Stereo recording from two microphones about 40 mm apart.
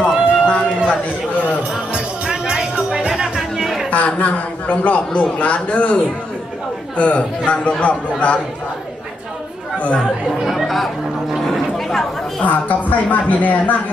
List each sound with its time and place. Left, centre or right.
0.0 s a sound: left
1.7 s music: right
3.9 s a man's voice: left
7.0 s a man's voice: left
9.9 s speech: centre
11.4 s a sound: centre
12.4 s speech: left